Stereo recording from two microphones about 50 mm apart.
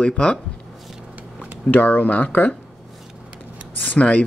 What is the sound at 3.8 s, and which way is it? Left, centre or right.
Speech, left.